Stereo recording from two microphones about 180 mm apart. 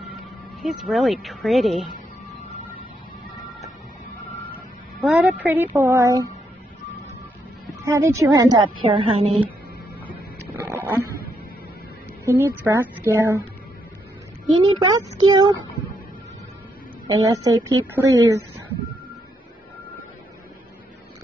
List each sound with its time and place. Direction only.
0.6 s speech: centre (ahead or behind)
5.0 s a woman's voice: 10° right (ahead or behind)
7.8 s a woman's voice: 15° right (ahead or behind)
8.8 s a woman's voice: 30° right (ahead or behind)
10.5 s a sound: 10° right (ahead or behind)
12.3 s a woman's voice: 15° right (ahead or behind)
14.8 s speech: 20° right (ahead or behind)
17.1 s a woman's voice: 20° right (ahead or behind)